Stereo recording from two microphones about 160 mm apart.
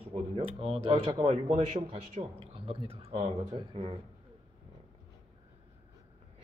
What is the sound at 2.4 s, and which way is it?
Speech, 40° right (ahead or behind).